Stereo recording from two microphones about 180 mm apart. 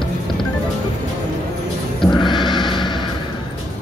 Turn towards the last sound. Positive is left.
turn(degrees=25)  # may be behind; listen again after turning